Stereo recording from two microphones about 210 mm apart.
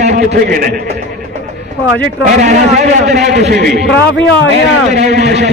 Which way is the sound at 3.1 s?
45° right (ahead or behind).